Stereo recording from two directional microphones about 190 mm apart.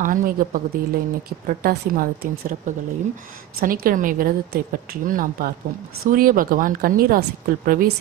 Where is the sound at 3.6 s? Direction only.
50° right (ahead or behind).